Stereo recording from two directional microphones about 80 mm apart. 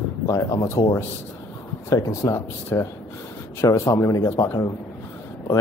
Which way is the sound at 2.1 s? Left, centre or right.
Left.